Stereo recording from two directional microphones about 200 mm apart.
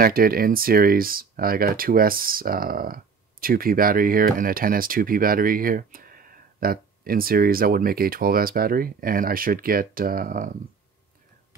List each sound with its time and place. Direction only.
0.0 s speech: 45° right (ahead or behind)